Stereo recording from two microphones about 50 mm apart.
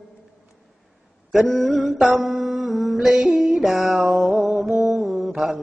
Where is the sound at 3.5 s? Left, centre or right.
Centre.